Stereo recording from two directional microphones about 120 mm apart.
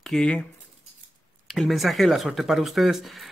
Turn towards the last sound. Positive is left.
turn(degrees=0)  # may be behind; listen again after turning